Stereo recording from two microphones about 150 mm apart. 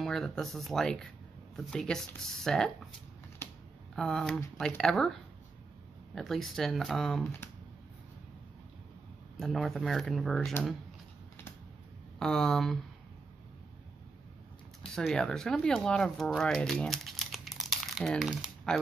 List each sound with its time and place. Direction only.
0.0 s speech: 5° left (ahead or behind)
3.4 s a sound: 15° left (ahead or behind)
3.9 s speech: 5° left (ahead or behind)
9.4 s speech: centre (ahead or behind)
12.2 s speech: 5° left (ahead or behind)
15.0 s speech: centre (ahead or behind)